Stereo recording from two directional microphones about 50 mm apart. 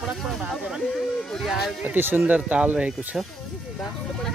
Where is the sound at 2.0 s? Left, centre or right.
Right.